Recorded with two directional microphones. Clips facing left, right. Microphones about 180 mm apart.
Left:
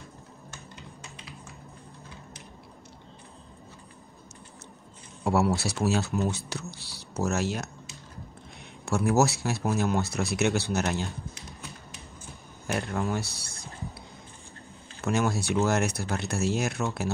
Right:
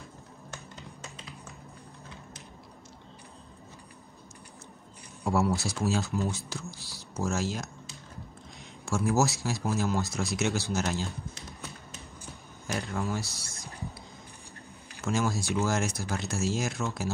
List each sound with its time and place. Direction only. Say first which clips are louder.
5.2 s speech: left 2 dB; 70° left (ahead or behind)
8.8 s speech: left 3 dB; 65° left (ahead or behind)
12.7 s speech: left 3 dB; 60° left (ahead or behind)
15.0 s speech: left 3 dB; 60° left (ahead or behind)